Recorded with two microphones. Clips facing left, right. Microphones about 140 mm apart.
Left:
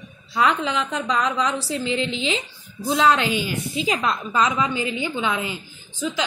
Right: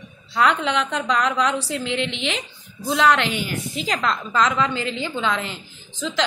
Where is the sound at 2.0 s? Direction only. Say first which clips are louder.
Left 1 dB; 75° right (ahead or behind).